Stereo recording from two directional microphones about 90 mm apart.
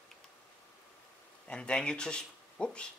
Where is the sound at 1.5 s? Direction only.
10° left (ahead or behind).